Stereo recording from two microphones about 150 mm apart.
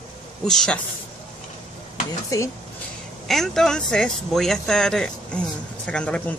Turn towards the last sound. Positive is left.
turn(degrees=5)  # may be behind; listen again after turning